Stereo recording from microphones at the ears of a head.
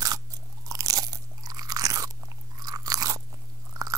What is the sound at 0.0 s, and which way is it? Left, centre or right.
Crunch, right.